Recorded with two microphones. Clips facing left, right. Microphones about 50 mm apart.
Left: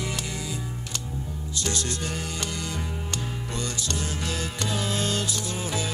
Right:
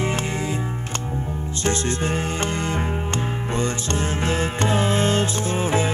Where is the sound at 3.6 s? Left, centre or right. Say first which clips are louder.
Right 7 dB; right.